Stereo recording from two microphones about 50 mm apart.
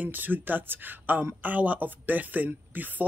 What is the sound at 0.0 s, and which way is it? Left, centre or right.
Speech, right.